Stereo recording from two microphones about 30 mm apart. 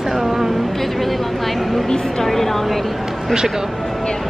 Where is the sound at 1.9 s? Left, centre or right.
Centre.